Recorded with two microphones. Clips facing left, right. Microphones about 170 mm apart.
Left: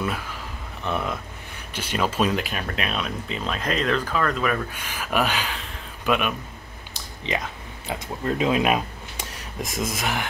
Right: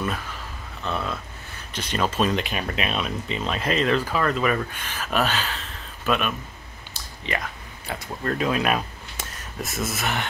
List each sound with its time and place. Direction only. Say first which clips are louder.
0.8 s speech: left 1 dB; 15° left (ahead or behind); by 4.6 s 5° right (ahead or behind)
4.7 s speech: left 1 dB; 10° left (ahead or behind)